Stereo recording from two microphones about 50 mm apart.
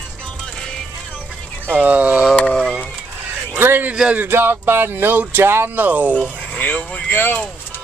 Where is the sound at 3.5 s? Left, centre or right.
Right.